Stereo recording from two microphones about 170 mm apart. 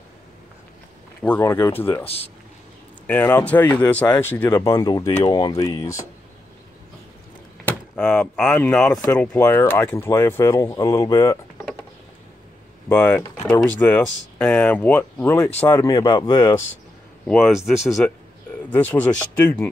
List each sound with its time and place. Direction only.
1.2 s speech: 10° left (ahead or behind)
3.1 s speech: 10° left (ahead or behind)
7.6 s speech: 5° left (ahead or behind)
12.8 s speech: 10° left (ahead or behind)
17.3 s speech: centre (ahead or behind)